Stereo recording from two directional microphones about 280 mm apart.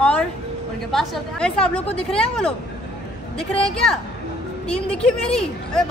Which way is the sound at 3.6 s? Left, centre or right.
Centre.